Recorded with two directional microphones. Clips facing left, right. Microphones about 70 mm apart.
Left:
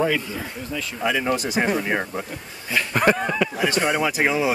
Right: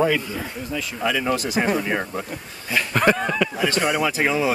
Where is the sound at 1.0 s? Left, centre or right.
Centre.